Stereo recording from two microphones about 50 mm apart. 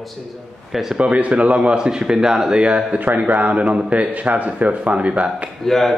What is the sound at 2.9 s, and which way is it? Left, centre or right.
A man's voice, right.